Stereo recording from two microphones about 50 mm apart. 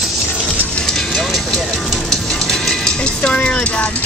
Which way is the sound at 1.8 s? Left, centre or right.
Centre.